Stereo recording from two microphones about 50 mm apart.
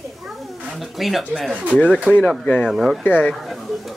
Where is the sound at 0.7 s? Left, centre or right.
Centre.